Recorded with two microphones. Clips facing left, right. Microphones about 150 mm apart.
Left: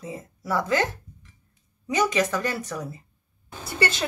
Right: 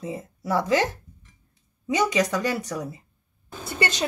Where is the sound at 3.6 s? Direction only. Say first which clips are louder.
Left 1 dB; 25° right (ahead or behind).